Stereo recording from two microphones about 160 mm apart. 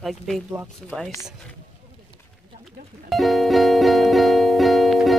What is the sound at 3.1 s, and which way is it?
Music, centre (ahead or behind).